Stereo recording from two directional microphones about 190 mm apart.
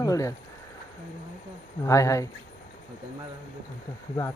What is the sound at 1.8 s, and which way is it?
Speech, 15° left (ahead or behind).